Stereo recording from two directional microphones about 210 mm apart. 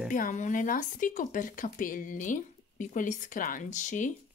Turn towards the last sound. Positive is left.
turn(degrees=35)  # may be behind; listen again after turning